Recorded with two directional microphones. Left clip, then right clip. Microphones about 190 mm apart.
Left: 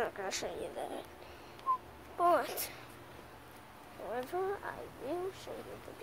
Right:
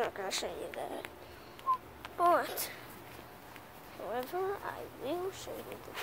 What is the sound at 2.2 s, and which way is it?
Speech, centre (ahead or behind).